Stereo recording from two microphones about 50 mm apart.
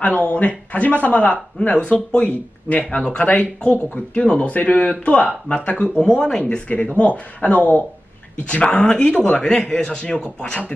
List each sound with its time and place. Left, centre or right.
0.0 s speech: left
5.9 s a man's voice: centre